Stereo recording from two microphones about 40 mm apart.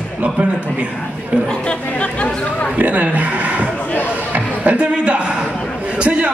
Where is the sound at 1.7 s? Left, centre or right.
Left.